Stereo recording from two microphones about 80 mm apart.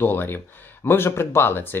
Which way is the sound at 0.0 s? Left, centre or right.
Left.